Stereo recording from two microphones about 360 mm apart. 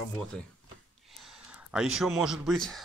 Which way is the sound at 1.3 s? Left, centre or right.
Centre.